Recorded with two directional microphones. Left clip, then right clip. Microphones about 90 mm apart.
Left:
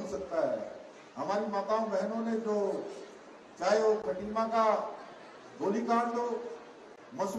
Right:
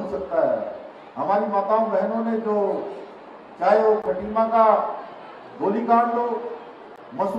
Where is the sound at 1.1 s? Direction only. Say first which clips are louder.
Right 11 dB; 15° right (ahead or behind).